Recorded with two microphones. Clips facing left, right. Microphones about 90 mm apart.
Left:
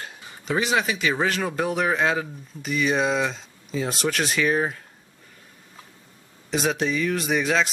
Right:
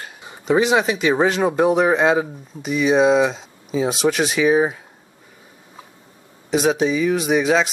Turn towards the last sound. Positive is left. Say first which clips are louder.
# right 5 dB
turn(degrees=-5)  # may be behind; listen again after turning